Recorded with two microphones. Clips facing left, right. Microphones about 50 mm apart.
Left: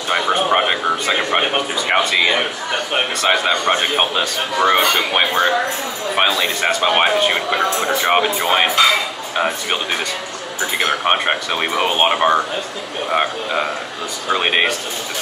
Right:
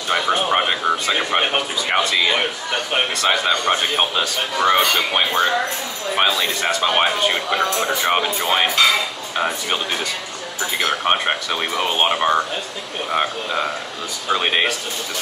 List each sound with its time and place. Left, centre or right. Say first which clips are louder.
0.1 s speech: left 2 dB; centre
10.8 s speech: left 2 dB; centre